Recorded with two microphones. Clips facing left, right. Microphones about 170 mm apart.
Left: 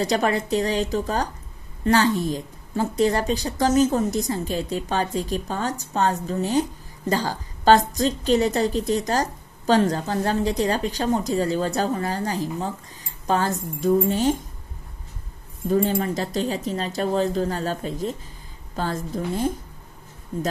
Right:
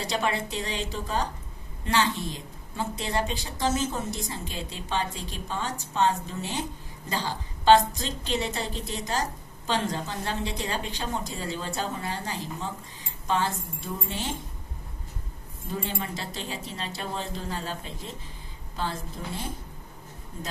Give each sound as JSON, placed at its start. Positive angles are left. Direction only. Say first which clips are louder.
{"t": 0.0, "sound": "a woman's voice", "louder": "left 7 dB", "side_deg": 45}
{"t": 15.7, "sound": "a woman's voice", "louder": "left 11 dB", "side_deg": 45}